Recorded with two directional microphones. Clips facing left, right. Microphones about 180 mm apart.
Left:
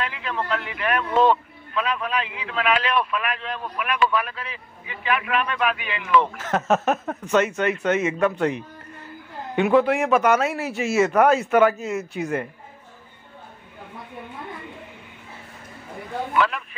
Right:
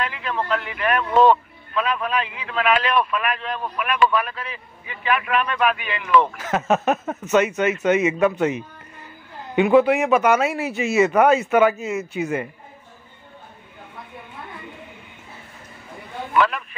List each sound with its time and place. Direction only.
0.0 s a man's voice: 50° right (ahead or behind)
6.3 s a man's voice: 5° right (ahead or behind)
16.3 s a man's voice: 55° right (ahead or behind)